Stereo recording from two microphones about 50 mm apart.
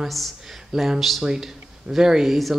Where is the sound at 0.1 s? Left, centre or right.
Centre.